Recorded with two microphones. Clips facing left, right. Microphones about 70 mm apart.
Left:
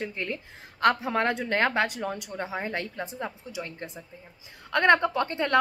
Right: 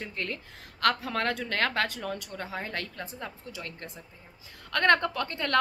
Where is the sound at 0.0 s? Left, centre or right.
Centre.